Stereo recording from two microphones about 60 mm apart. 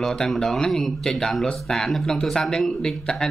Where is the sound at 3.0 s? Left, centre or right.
Centre.